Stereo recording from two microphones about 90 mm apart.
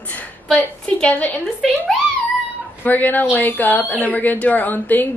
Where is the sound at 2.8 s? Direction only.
20° left (ahead or behind).